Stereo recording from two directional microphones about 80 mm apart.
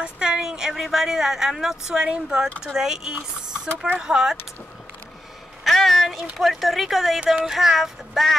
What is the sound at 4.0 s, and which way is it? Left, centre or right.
Speech, centre.